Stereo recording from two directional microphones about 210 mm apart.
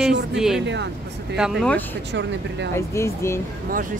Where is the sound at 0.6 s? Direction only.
55° right (ahead or behind).